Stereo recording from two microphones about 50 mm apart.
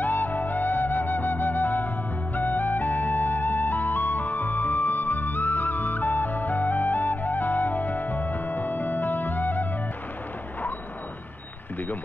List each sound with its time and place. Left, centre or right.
0.0 s music: left